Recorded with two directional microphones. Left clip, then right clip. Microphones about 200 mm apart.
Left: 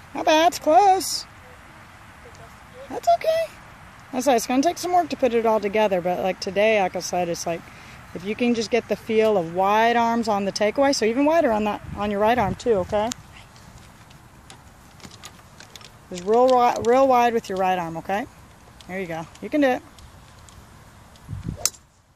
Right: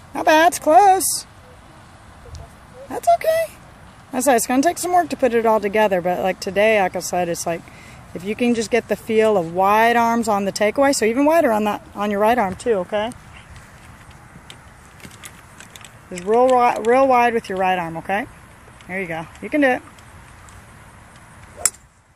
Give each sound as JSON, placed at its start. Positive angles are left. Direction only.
{"t": 0.1, "sound": "speech", "side_deg": 0}
{"t": 2.9, "sound": "speech", "side_deg": 0}
{"t": 12.6, "sound": "speech", "side_deg": 25}
{"t": 16.3, "sound": "speech", "side_deg": 20}